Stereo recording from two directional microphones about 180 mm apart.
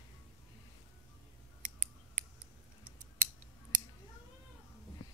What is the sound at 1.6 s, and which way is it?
Scissors, 40° right (ahead or behind).